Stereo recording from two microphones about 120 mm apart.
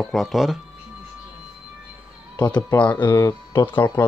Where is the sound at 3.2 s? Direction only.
25° left (ahead or behind).